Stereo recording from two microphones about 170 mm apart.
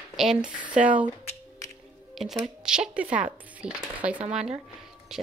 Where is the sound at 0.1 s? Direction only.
Centre (ahead or behind).